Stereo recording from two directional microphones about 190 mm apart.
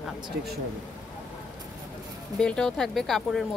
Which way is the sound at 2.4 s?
5° left (ahead or behind).